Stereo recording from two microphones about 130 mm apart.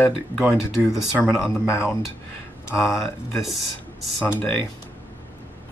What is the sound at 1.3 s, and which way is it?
Speech, 20° left (ahead or behind).